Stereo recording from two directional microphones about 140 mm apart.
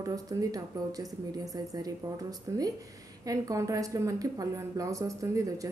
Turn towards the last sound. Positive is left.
turn(degrees=-25)  # may be behind; listen again after turning